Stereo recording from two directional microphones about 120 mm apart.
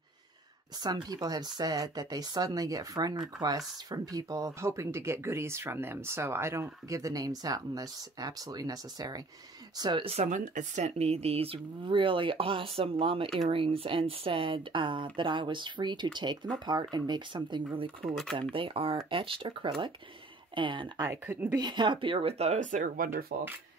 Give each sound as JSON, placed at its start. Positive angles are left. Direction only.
{"t": 0.7, "sound": "speech", "side_deg": -35}
{"t": 10.0, "sound": "speech", "side_deg": -75}
{"t": 18.0, "sound": "speech", "side_deg": 0}
{"t": 18.5, "sound": "speech", "side_deg": -50}
{"t": 21.0, "sound": "speech", "side_deg": -25}
{"t": 21.5, "sound": "speech", "side_deg": -40}